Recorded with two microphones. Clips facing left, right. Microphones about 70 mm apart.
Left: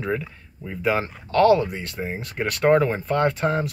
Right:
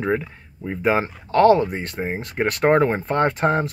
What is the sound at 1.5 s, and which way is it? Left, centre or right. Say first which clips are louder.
Speech: right 2 dB; right.